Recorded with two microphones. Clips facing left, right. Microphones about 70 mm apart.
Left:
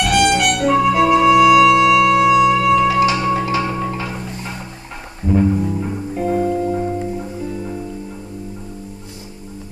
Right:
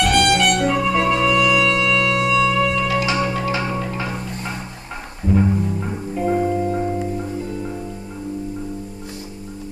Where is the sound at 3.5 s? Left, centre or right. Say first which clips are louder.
Left 3 dB; right.